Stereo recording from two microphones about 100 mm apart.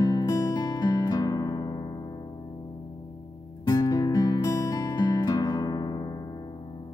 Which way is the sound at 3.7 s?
40° left (ahead or behind).